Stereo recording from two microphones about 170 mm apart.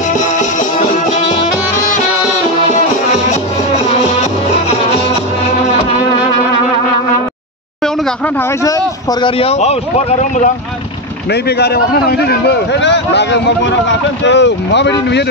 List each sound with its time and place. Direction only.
9.2 s speech: 35° left (ahead or behind)
11.4 s a man's voice: 70° left (ahead or behind); by 15.2 s 90° left